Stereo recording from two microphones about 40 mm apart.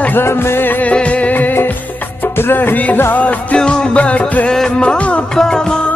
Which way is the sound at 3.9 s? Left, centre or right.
Left.